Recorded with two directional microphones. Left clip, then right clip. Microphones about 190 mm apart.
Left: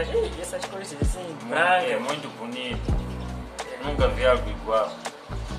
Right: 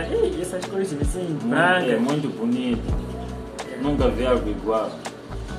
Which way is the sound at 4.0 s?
15° left (ahead or behind).